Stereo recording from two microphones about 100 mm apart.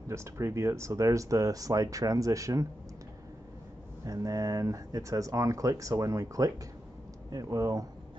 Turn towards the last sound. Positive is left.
turn(degrees=-35)  # may be behind; listen again after turning